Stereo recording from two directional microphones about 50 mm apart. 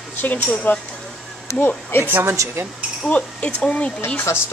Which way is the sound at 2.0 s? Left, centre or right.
Right.